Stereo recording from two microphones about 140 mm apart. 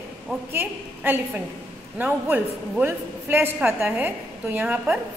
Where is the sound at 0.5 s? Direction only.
15° right (ahead or behind).